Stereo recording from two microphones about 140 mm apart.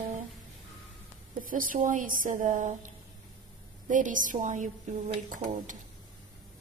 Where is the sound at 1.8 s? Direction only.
75° right (ahead or behind).